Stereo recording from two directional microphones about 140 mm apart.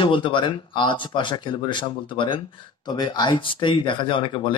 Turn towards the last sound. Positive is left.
turn(degrees=35)  # may be behind; listen again after turning